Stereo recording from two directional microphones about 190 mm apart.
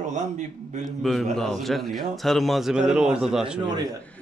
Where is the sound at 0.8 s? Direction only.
Centre (ahead or behind).